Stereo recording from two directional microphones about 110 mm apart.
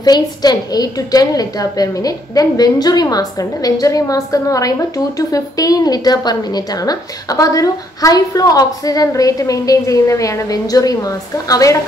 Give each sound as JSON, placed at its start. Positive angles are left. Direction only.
{"t": 0.0, "sound": "a woman's voice", "side_deg": 35}